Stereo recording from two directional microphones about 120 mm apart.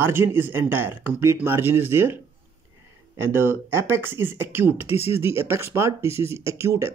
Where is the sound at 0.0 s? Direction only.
20° right (ahead or behind).